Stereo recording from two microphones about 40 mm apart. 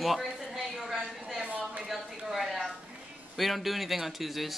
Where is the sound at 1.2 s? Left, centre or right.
Centre.